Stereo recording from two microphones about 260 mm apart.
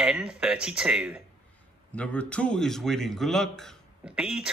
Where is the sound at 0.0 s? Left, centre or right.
Centre.